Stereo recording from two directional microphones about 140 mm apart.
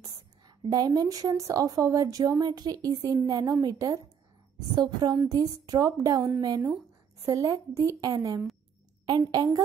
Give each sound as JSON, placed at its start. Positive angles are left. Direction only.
{"t": 0.7, "sound": "a woman's voice", "side_deg": -25}